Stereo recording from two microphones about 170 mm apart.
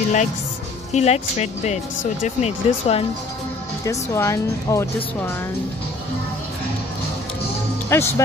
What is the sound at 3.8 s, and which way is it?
Speech, 20° left (ahead or behind).